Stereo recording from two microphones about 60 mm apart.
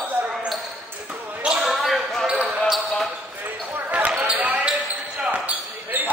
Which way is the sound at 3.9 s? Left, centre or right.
Right.